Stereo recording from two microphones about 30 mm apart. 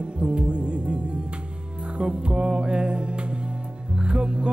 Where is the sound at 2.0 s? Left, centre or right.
Right.